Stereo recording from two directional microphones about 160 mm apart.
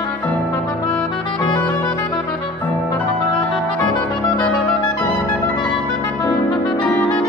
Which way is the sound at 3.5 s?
10° left (ahead or behind).